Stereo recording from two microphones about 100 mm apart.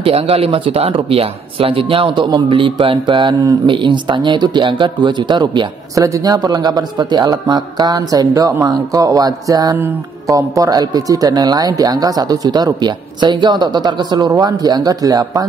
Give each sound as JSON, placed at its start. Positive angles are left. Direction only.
{"t": 0.0, "sound": "speech", "side_deg": -75}
{"t": 5.9, "sound": "speech", "side_deg": -35}